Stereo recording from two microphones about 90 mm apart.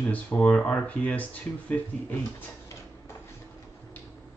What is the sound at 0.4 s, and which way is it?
Speech, 10° left (ahead or behind).